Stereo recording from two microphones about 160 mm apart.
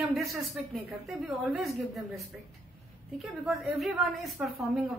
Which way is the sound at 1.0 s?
5° right (ahead or behind).